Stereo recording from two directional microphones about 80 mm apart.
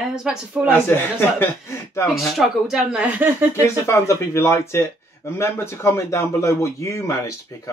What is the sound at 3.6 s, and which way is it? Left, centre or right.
A man's voice, left.